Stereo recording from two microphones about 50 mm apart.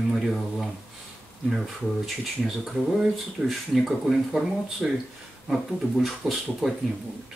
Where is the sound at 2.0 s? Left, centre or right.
Centre.